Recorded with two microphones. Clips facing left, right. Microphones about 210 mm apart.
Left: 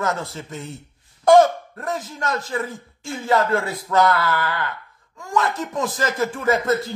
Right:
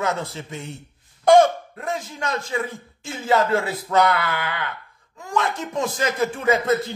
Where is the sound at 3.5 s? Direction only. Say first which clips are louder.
Even; 25° right (ahead or behind).